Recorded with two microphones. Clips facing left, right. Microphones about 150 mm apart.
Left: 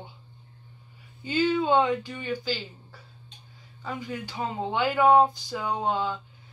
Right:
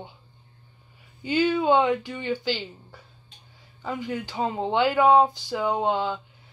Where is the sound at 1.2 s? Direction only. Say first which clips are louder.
Right 2 dB; 15° right (ahead or behind).